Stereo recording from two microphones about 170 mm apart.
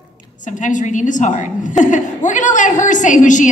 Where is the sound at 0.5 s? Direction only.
45° left (ahead or behind).